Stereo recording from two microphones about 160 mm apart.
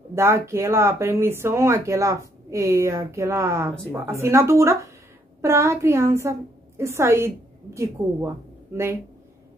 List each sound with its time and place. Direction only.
0.1 s speech: 15° right (ahead or behind)